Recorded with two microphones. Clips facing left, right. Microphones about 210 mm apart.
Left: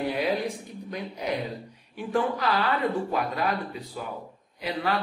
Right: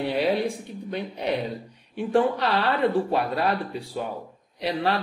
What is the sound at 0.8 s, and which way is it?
Speech, 30° right (ahead or behind).